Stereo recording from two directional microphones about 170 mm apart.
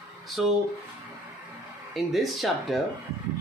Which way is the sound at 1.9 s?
Centre (ahead or behind).